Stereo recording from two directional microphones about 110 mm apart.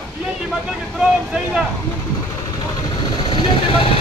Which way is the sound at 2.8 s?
45° left (ahead or behind).